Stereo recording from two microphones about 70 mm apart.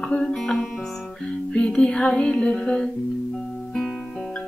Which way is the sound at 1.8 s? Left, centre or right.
Centre.